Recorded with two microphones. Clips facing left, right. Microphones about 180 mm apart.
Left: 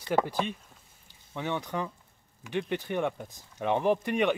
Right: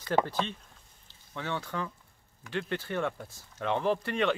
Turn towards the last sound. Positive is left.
turn(degrees=15)  # may be behind; listen again after turning